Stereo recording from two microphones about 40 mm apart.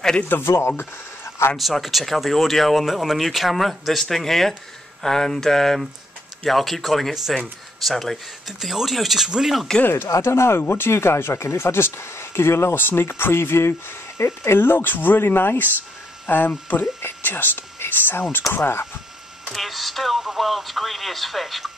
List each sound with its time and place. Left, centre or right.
0.2 s speech: left
1.6 s speech: centre
8.5 s speech: centre
9.8 s speech: left
18.5 s speech: left
19.5 s speech: centre